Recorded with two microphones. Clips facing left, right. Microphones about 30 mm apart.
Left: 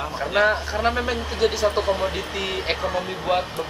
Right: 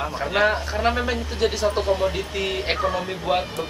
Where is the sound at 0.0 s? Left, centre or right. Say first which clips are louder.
Left 1 dB; centre.